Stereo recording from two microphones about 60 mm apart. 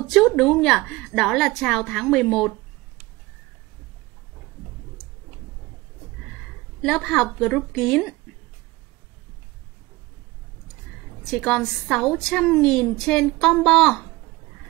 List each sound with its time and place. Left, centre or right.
0.0 s a woman's voice: centre
6.8 s a woman's voice: centre
11.2 s a woman's voice: centre